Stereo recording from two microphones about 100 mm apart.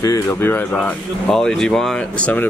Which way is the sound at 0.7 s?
5° left (ahead or behind).